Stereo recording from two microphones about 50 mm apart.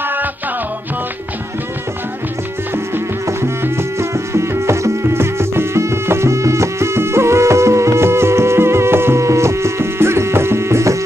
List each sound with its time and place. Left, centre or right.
3.6 s music: right
9.2 s music: right